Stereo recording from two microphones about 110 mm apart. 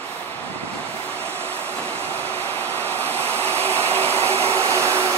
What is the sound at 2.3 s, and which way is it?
Vehicle, 15° left (ahead or behind).